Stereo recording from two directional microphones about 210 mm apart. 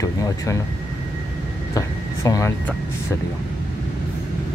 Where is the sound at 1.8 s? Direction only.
15° left (ahead or behind).